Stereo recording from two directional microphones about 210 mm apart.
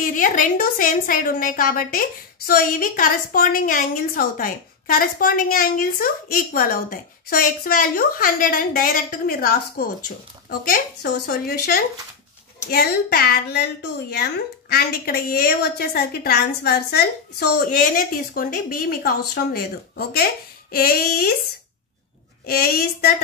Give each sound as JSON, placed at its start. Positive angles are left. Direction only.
{"t": 0.0, "sound": "a woman's voice", "side_deg": 40}
{"t": 22.5, "sound": "a woman's voice", "side_deg": 45}